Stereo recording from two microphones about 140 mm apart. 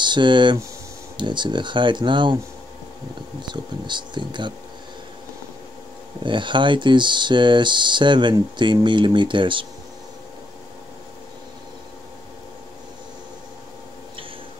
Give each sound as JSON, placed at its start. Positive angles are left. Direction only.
{"t": 0.0, "sound": "speech", "side_deg": -35}
{"t": 3.4, "sound": "speech", "side_deg": -35}
{"t": 6.2, "sound": "speech", "side_deg": -35}